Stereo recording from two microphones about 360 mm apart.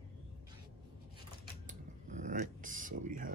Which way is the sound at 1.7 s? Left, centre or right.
Right.